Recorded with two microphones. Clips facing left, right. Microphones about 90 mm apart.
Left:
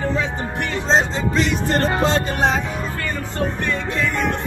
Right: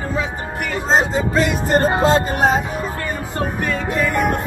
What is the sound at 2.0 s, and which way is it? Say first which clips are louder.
Speech: right 3 dB; 40° right (ahead or behind).